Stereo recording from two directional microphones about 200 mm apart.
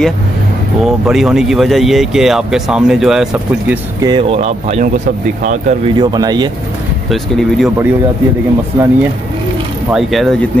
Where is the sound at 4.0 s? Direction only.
25° right (ahead or behind).